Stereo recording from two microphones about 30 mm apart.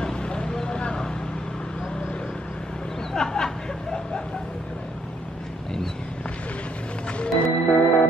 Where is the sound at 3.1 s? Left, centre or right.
Centre.